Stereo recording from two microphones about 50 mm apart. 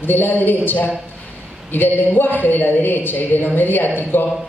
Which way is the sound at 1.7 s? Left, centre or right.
Left.